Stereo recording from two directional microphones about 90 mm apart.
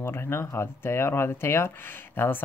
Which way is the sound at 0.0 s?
25° left (ahead or behind).